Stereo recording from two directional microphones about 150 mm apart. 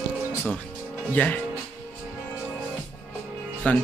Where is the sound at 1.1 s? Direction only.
10° left (ahead or behind).